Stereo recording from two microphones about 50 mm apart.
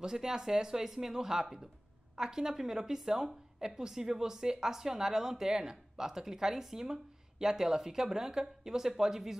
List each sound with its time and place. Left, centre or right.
0.0 s a woman's voice: centre